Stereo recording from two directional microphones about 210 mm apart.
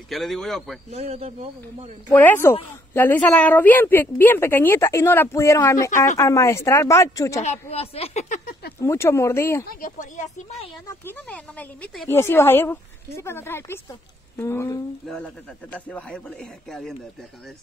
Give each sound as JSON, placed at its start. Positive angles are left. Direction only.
{"t": 0.1, "sound": "speech", "side_deg": 0}
{"t": 0.9, "sound": "speech", "side_deg": -30}
{"t": 2.0, "sound": "a woman's voice", "side_deg": 10}
{"t": 7.7, "sound": "speech", "side_deg": 30}
{"t": 8.8, "sound": "a woman's voice", "side_deg": 10}
{"t": 9.7, "sound": "speech", "side_deg": 40}
{"t": 11.1, "sound": "a woman's voice", "side_deg": 5}